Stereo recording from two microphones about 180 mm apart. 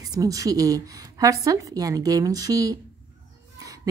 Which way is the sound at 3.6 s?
20° right (ahead or behind).